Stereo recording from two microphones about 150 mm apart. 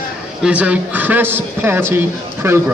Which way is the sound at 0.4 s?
10° right (ahead or behind).